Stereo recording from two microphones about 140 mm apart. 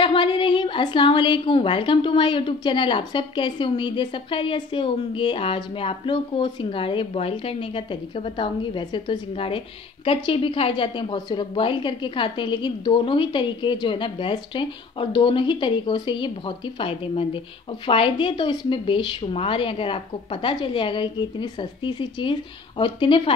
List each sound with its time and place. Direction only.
0.0 s a woman's voice: 40° left (ahead or behind)